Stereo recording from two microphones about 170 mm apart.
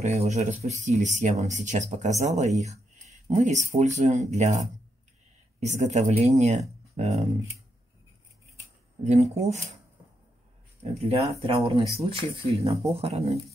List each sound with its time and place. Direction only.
0.0 s speech: 40° right (ahead or behind)
9.0 s speech: 40° right (ahead or behind)
10.8 s speech: 35° right (ahead or behind)